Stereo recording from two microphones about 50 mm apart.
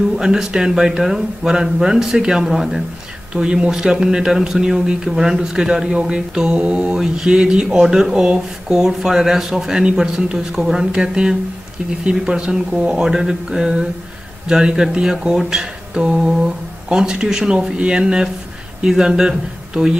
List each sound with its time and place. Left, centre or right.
0.1 s speech: centre